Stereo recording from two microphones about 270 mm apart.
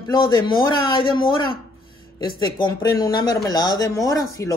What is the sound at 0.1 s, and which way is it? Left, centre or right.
Speech, centre.